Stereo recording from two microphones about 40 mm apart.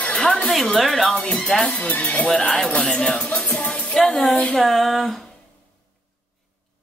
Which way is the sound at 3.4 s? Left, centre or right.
Left.